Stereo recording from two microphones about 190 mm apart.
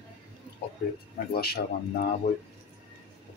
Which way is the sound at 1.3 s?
55° left (ahead or behind).